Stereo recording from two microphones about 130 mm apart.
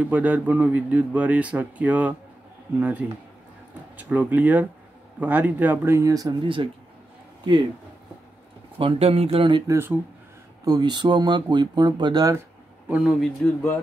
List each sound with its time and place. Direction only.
0.0 s a man's voice: 10° right (ahead or behind); by 6.5 s 25° right (ahead or behind)
8.7 s speech: 45° right (ahead or behind)
9.7 s a man's voice: 20° right (ahead or behind)
10.6 s speech: 30° right (ahead or behind)
12.8 s speech: 5° right (ahead or behind)